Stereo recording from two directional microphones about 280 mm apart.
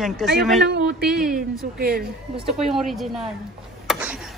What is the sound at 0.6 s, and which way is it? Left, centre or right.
Speech, right.